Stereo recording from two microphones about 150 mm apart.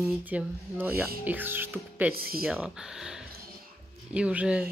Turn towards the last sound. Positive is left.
turn(degrees=-10)  # may be behind; listen again after turning